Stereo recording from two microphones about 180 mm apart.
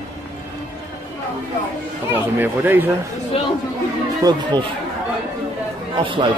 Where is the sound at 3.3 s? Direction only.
30° left (ahead or behind).